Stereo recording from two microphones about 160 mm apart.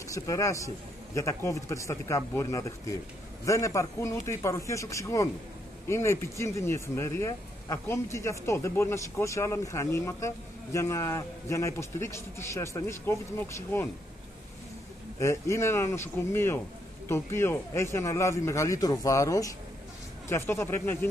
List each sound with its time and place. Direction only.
0.0 s a man's voice: 20° left (ahead or behind)
15.1 s speech: 15° left (ahead or behind)